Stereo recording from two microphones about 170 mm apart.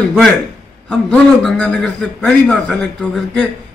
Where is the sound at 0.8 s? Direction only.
5° left (ahead or behind).